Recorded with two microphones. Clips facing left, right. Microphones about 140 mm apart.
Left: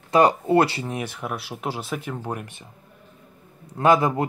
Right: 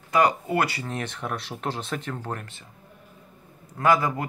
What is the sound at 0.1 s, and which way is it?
Speech, 30° left (ahead or behind).